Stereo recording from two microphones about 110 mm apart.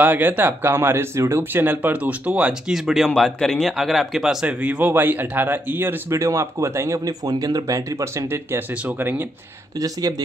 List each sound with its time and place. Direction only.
0.0 s speech: 15° right (ahead or behind)